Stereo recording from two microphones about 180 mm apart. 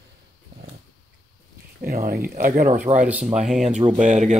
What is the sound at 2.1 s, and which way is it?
Speech, 15° right (ahead or behind).